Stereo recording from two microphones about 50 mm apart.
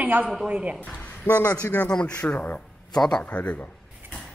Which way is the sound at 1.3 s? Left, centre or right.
Left.